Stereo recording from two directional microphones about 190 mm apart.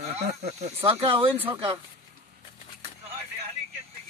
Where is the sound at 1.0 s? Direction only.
30° right (ahead or behind).